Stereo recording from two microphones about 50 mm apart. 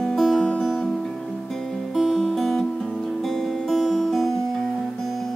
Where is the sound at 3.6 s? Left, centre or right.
Centre.